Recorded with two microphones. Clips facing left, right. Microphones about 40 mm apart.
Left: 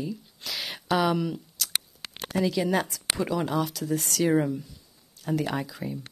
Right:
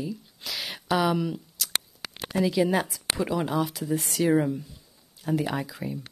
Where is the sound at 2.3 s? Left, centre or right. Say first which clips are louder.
Right 2 dB; centre.